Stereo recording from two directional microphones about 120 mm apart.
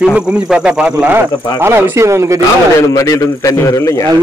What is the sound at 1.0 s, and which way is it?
Speech, 20° right (ahead or behind).